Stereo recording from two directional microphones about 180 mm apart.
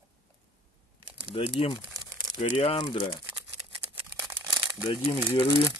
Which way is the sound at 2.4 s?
30° left (ahead or behind).